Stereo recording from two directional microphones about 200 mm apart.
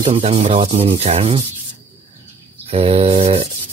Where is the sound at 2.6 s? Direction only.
30° right (ahead or behind).